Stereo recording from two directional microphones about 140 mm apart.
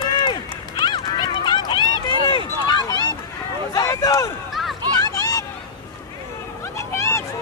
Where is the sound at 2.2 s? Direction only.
30° left (ahead or behind).